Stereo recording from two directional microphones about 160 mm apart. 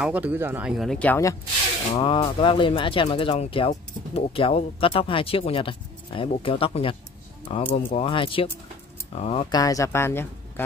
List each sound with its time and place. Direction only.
0.0 s speech: 10° right (ahead or behind); by 1.3 s 10° left (ahead or behind)
2.0 s speech: 30° left (ahead or behind)
9.5 s speech: 20° left (ahead or behind)